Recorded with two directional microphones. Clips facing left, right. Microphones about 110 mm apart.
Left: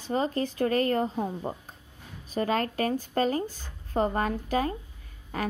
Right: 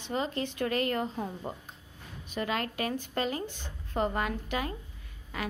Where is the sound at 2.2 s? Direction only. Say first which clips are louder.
Left 5 dB; 40° left (ahead or behind).